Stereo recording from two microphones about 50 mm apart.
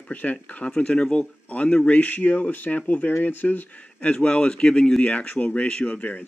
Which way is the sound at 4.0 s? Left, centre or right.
Left.